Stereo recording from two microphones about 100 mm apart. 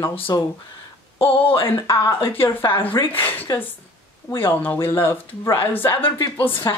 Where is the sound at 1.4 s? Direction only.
65° left (ahead or behind).